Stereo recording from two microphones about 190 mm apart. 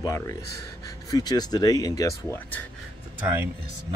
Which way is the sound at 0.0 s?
15° left (ahead or behind).